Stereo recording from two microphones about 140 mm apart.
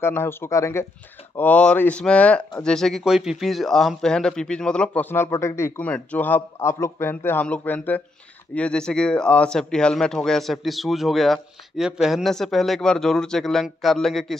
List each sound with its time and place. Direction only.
0.0 s speech: 15° left (ahead or behind)